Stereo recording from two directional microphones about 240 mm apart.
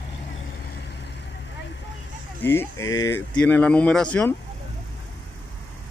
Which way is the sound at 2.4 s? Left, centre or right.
Centre.